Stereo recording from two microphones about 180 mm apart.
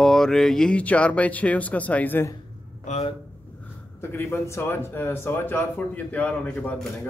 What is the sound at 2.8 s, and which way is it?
Speech, 35° left (ahead or behind).